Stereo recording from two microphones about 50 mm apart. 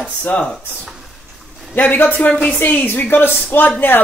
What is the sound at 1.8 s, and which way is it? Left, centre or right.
Speech, left.